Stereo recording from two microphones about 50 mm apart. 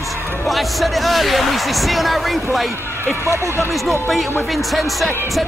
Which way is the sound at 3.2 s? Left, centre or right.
Right.